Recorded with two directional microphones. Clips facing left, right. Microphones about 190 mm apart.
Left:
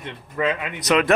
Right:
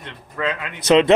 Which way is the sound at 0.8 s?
25° right (ahead or behind).